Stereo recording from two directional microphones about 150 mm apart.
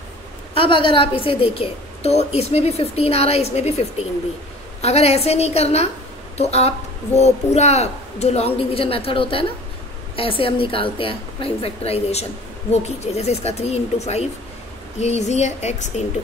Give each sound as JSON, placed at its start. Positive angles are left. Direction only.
{"t": 0.6, "sound": "a woman's voice", "side_deg": 35}
{"t": 4.8, "sound": "a woman's voice", "side_deg": 45}